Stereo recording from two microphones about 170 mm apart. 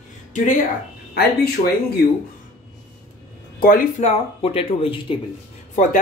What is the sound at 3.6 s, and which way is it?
Speech, 55° left (ahead or behind).